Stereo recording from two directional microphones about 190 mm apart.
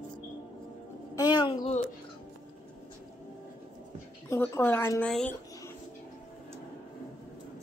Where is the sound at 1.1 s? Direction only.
20° left (ahead or behind).